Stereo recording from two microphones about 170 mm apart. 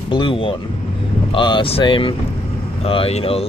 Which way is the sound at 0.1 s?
30° left (ahead or behind).